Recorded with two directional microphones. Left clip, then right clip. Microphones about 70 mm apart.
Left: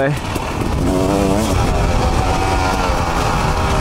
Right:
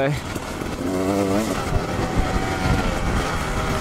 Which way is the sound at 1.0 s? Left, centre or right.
Left.